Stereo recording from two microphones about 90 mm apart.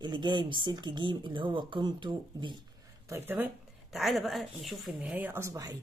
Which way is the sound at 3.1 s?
25° right (ahead or behind).